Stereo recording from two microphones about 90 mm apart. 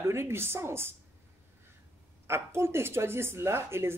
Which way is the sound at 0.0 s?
30° right (ahead or behind).